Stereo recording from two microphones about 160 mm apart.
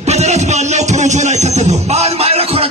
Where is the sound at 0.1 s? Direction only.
45° right (ahead or behind).